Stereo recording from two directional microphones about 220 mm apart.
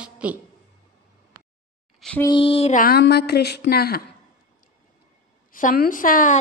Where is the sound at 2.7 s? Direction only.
45° left (ahead or behind).